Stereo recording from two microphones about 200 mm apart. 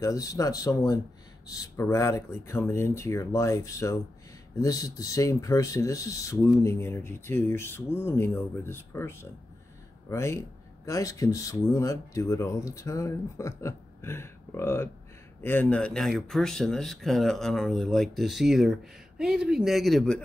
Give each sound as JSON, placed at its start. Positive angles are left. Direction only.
{"t": 0.0, "sound": "speech", "side_deg": 15}